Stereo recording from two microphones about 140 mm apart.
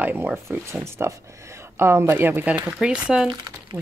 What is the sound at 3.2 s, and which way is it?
Speech, 30° right (ahead or behind).